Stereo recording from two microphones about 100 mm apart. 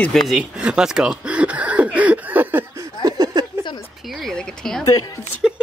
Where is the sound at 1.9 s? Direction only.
15° right (ahead or behind).